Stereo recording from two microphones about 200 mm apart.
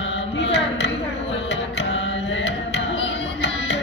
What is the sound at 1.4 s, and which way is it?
Music, 65° left (ahead or behind).